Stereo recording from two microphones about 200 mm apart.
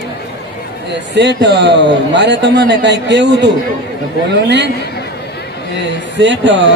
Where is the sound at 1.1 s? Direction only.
60° right (ahead or behind).